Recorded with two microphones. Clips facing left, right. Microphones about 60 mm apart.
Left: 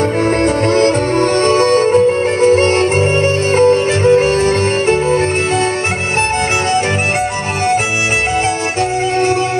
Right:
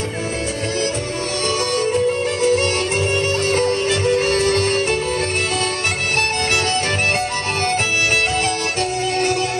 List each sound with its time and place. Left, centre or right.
0.7 s music: left